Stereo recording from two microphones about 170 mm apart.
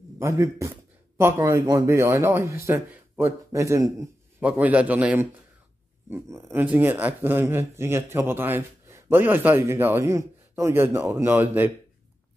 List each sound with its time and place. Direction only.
0.2 s speech: 15° right (ahead or behind)